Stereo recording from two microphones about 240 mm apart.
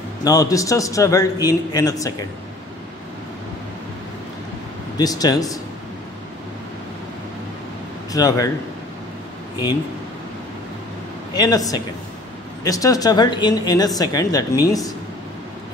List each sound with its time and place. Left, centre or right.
0.2 s a woman's voice: centre
4.9 s a woman's voice: centre
8.1 s a woman's voice: centre
11.3 s a woman's voice: centre